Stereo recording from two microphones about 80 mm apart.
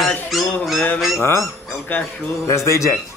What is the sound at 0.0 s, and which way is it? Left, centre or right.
Dog, centre.